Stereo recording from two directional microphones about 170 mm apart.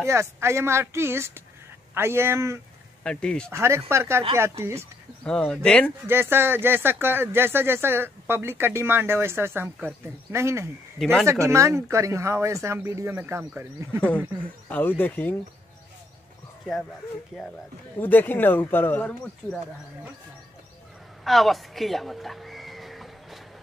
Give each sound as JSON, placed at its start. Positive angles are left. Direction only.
{"t": 0.0, "sound": "speech", "side_deg": -15}
{"t": 3.0, "sound": "speech", "side_deg": 5}
{"t": 3.5, "sound": "speech", "side_deg": -15}
{"t": 5.2, "sound": "speech", "side_deg": 5}
{"t": 6.0, "sound": "speech", "side_deg": -15}
{"t": 14.7, "sound": "speech", "side_deg": 10}
{"t": 17.3, "sound": "speech", "side_deg": 0}
{"t": 17.9, "sound": "speech", "side_deg": 10}
{"t": 21.2, "sound": "a sound", "side_deg": 0}